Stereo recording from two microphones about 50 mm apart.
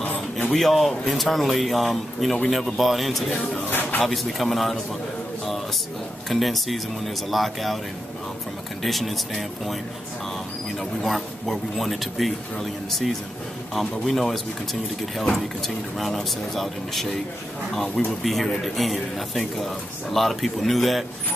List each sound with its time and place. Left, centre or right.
0.0 s a sound: left
0.5 s a man's voice: centre
6.2 s a man's voice: centre
8.8 s a man's voice: centre
10.8 s a man's voice: centre